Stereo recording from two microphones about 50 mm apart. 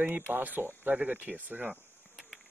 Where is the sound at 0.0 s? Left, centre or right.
Right.